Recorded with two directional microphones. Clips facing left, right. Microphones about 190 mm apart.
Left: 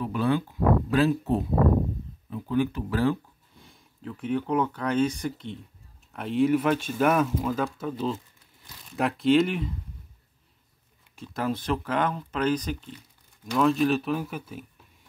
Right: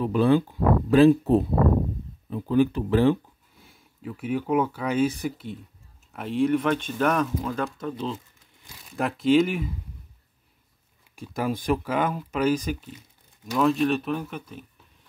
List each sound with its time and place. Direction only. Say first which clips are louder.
0.0 s speech: right 5 dB; 30° right (ahead or behind)
3.6 s speech: right 2 dB; 5° right (ahead or behind)
11.1 s speech: right 1 dB; 10° right (ahead or behind); by 14.7 s 5° left (ahead or behind)